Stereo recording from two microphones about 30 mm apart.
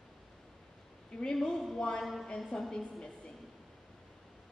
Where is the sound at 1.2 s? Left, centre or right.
Left.